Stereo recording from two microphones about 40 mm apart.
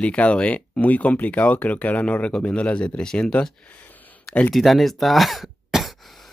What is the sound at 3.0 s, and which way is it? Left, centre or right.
Speech, centre.